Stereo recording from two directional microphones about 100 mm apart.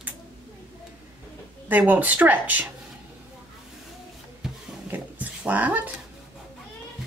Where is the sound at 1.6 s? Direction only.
15° right (ahead or behind).